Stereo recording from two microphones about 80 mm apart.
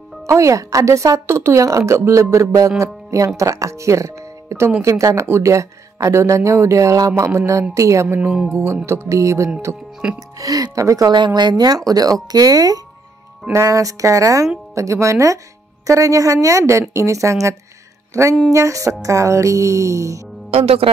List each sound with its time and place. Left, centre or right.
0.3 s a woman's voice: right
8.2 s speech: centre
8.8 s a woman's voice: right
11.1 s a woman's voice: right